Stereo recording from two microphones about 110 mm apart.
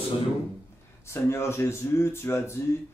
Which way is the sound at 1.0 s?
25° left (ahead or behind).